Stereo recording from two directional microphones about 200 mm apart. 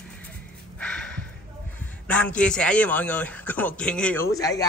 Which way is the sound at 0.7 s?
5° left (ahead or behind).